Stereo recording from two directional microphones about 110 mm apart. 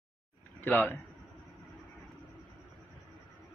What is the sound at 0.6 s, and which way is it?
Speech, 15° left (ahead or behind).